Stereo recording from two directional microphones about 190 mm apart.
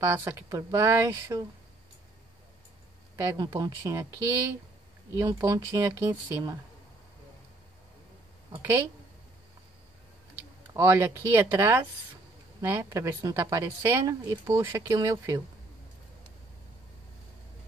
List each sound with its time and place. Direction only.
0.0 s speech: 15° right (ahead or behind)
3.2 s speech: 15° right (ahead or behind)
5.2 s speech: 15° right (ahead or behind)
8.5 s speech: 10° right (ahead or behind)
10.3 s speech: 15° right (ahead or behind)